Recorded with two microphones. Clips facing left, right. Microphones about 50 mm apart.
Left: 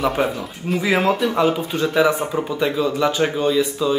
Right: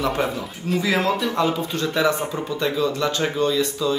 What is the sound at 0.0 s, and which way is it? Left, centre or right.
Speech, centre.